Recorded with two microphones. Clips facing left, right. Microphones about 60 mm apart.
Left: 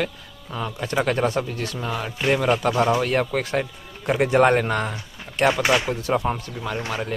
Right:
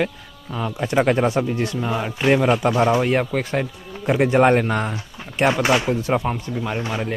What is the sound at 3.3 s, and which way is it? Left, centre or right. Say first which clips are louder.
Speech: right 1 dB; centre.